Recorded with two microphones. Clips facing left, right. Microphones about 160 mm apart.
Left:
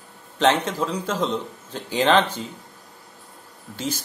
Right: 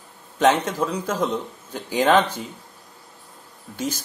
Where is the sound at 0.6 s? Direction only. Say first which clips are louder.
Right 1 dB; 10° right (ahead or behind).